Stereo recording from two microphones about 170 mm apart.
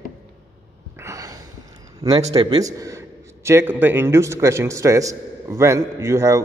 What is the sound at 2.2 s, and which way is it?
Speech, 35° right (ahead or behind).